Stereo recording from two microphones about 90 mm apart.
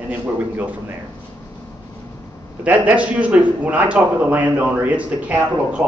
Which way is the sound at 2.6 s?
15° right (ahead or behind).